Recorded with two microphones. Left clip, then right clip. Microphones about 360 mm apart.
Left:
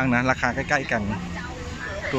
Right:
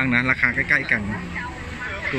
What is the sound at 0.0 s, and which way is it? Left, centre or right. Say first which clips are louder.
Speech: right 3 dB; centre.